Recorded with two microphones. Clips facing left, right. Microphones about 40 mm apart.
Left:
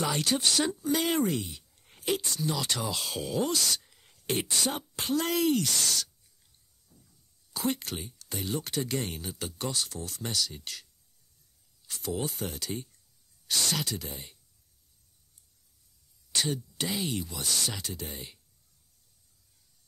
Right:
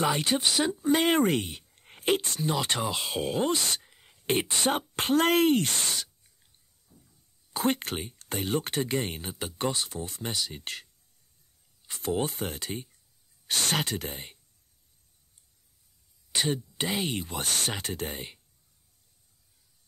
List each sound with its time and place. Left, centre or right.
0.0 s speech: right
0.5 s speech: centre
0.7 s speech: right
6.9 s a sound: centre
7.5 s speech: right
10.6 s speech: right
16.3 s speech: right